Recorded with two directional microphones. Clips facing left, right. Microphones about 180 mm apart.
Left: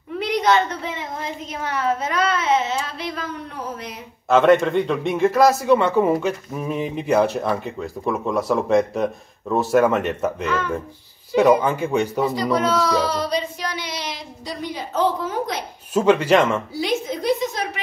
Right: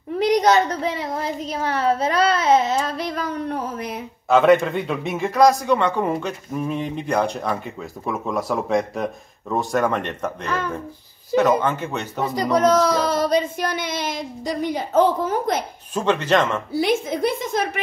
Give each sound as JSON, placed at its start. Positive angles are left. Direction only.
{"t": 0.3, "sound": "speech", "side_deg": -40}
{"t": 4.3, "sound": "a man's voice", "side_deg": 0}
{"t": 11.3, "sound": "a man's voice", "side_deg": 10}
{"t": 12.4, "sound": "a sound", "side_deg": -45}
{"t": 15.9, "sound": "a man's voice", "side_deg": 10}
{"t": 16.7, "sound": "a sound", "side_deg": -55}